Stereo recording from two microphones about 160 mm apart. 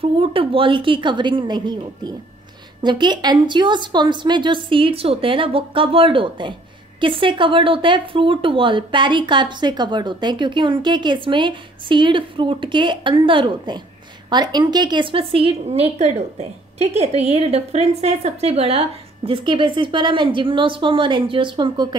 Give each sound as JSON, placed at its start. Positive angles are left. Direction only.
{"t": 0.0, "sound": "a woman's voice", "side_deg": -35}